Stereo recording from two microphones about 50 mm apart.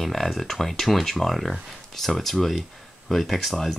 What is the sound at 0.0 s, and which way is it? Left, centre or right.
Speech, centre.